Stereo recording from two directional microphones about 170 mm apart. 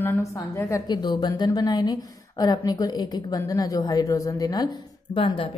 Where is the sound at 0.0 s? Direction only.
10° left (ahead or behind).